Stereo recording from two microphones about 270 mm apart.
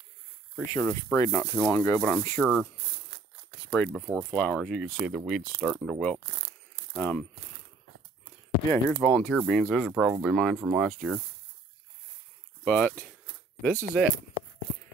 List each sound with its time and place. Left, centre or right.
0.6 s speech: centre
3.7 s speech: centre
8.8 s speech: centre
12.6 s speech: centre